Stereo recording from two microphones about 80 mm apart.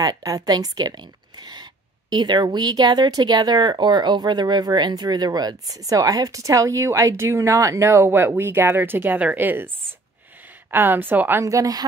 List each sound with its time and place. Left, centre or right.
0.0 s a woman's voice: right
10.7 s a woman's voice: right
11.4 s a woman's voice: right